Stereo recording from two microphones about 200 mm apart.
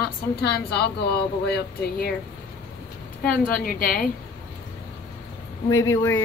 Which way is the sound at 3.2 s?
45° left (ahead or behind).